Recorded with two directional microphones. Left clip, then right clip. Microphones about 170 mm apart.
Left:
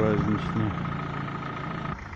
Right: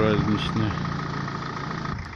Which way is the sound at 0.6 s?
20° left (ahead or behind).